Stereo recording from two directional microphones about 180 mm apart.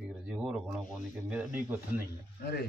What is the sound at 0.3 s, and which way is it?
Speech, 5° right (ahead or behind).